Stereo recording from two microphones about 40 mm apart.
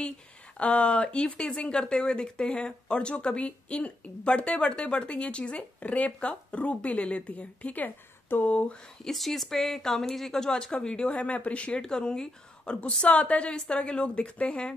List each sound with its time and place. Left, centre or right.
0.6 s speech: left
1.0 s speech: left
7.8 s a woman's voice: left
8.5 s speech: left
9.0 s speech: centre; by 11.2 s left
11.2 s speech: left
11.8 s speech: centre